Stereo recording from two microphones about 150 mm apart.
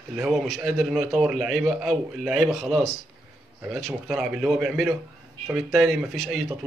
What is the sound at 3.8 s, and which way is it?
A man's voice, centre (ahead or behind).